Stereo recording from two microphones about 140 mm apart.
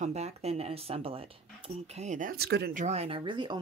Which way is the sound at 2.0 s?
65° right (ahead or behind).